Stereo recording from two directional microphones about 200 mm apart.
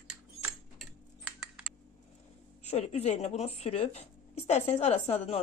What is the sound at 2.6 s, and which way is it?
Speech, 30° left (ahead or behind).